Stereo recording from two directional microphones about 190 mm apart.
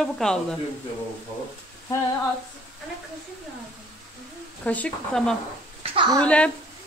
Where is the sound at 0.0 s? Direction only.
5° left (ahead or behind).